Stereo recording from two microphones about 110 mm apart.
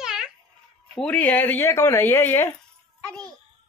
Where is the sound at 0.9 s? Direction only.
10° left (ahead or behind).